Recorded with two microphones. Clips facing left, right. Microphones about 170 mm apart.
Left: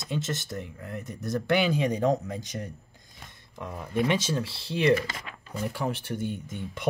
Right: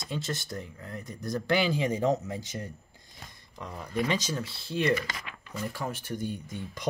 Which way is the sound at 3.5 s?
5° left (ahead or behind).